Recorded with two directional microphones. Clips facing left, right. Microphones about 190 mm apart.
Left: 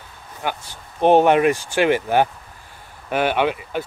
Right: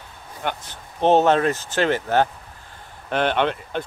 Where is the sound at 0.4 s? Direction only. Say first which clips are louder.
Left 1 dB; 10° left (ahead or behind).